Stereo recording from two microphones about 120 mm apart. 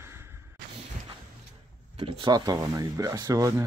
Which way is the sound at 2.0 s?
45° right (ahead or behind).